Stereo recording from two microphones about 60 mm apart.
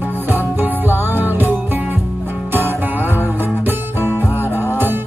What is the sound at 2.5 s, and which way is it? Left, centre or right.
Music, right.